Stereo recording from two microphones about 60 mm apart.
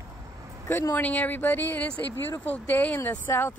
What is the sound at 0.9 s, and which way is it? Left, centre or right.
Speech, left.